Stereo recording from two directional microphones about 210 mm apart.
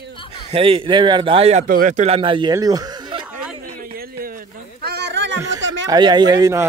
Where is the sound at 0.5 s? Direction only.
25° right (ahead or behind).